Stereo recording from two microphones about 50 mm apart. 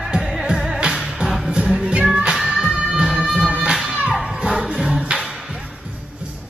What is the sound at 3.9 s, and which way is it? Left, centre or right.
Music, right.